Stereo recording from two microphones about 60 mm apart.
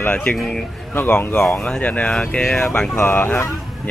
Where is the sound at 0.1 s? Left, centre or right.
Left.